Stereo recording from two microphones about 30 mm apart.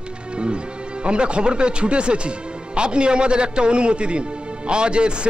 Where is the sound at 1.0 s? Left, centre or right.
Right.